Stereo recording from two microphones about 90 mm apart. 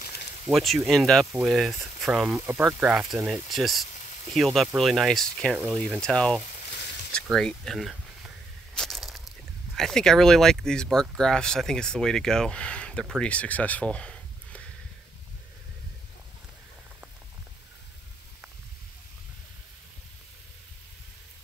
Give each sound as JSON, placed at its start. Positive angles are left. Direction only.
{"t": 0.5, "sound": "speech", "side_deg": 0}
{"t": 2.2, "sound": "speech", "side_deg": -25}
{"t": 2.9, "sound": "speech", "side_deg": -10}
{"t": 8.7, "sound": "crushing", "side_deg": 5}
{"t": 9.8, "sound": "speech", "side_deg": 5}